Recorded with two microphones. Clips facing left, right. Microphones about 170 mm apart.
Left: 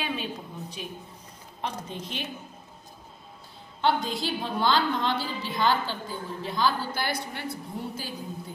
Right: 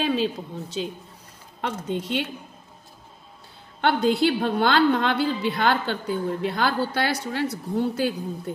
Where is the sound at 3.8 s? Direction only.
65° right (ahead or behind).